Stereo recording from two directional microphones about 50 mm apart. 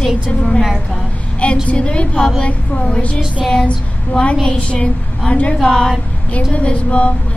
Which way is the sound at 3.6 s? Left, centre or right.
Left.